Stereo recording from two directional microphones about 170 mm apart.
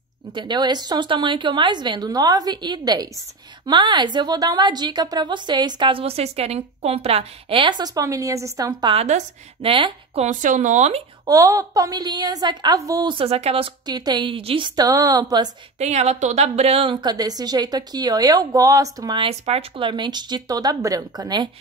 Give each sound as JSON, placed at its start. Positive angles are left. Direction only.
{"t": 0.3, "sound": "a woman's voice", "side_deg": -25}
{"t": 8.9, "sound": "a woman's voice", "side_deg": -40}
{"t": 11.2, "sound": "a woman's voice", "side_deg": -20}
{"t": 15.8, "sound": "a woman's voice", "side_deg": -40}
{"t": 19.2, "sound": "a woman's voice", "side_deg": -35}